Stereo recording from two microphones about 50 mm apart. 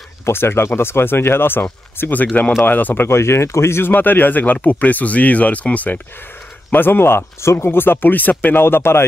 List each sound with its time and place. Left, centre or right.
0.2 s speech: left
3.9 s speech: left
6.7 s speech: left
8.6 s speech: left